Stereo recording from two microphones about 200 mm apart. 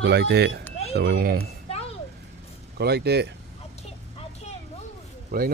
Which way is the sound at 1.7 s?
30° left (ahead or behind).